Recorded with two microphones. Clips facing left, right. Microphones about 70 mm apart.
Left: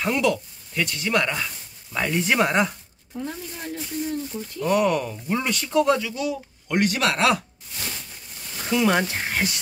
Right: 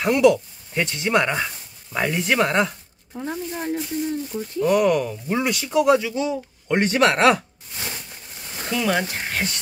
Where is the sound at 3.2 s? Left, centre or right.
Right.